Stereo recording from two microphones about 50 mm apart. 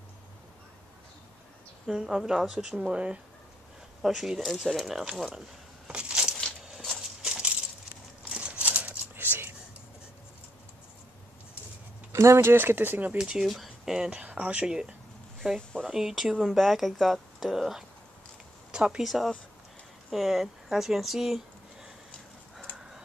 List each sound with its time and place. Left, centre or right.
1.9 s speech: centre
4.0 s speech: centre
5.9 s a sound: centre
9.1 s whispering: right
12.1 s speech: right
12.5 s speech: right
13.2 s speech: centre
14.2 s speech: right; by 17.8 s centre
18.7 s speech: centre
19.0 s speech: centre